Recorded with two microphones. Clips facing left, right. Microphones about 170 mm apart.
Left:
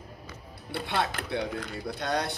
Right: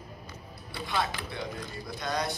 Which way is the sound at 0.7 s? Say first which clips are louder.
Left 2 dB; 65° left (ahead or behind).